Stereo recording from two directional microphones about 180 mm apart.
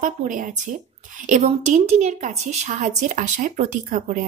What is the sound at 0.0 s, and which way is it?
A woman's voice, 45° right (ahead or behind).